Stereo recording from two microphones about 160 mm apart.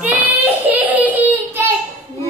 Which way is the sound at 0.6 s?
10° right (ahead or behind).